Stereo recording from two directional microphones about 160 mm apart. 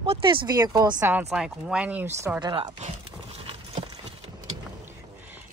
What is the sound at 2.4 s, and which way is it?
Speech, 30° right (ahead or behind).